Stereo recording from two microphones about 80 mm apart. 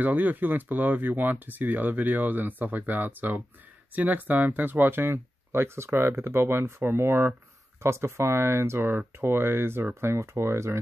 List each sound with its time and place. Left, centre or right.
0.0 s speech: right